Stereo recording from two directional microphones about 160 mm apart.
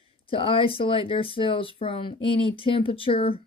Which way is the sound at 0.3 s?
35° left (ahead or behind).